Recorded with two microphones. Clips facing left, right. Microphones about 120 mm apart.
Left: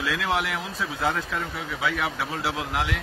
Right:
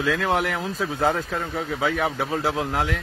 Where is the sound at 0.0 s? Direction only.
45° right (ahead or behind).